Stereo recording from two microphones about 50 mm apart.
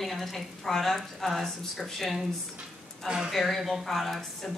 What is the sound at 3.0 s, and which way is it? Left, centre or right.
Speech, centre.